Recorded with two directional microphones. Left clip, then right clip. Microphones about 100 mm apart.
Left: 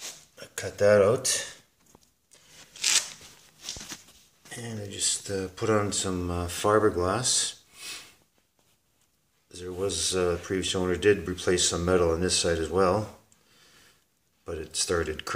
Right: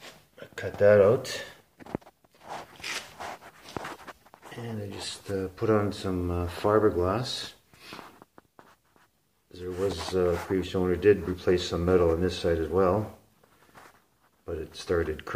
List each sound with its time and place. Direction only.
0.0 s dishes: centre (ahead or behind)
4.6 s speech: 15° left (ahead or behind)
9.5 s speech: 10° left (ahead or behind)
14.4 s speech: 20° left (ahead or behind)